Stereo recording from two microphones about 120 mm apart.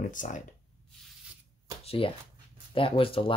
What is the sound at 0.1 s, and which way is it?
Speech, 90° left.